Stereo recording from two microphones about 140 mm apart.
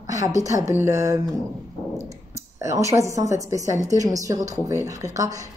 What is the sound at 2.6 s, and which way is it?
Speech, 20° right (ahead or behind).